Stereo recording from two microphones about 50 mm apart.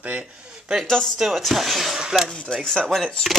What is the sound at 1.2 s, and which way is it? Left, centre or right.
Speech, centre.